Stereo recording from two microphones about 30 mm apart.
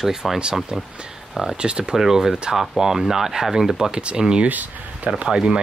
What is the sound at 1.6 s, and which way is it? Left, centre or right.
Speech, right.